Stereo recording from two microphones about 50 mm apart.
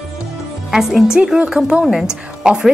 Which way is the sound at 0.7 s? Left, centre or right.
Centre.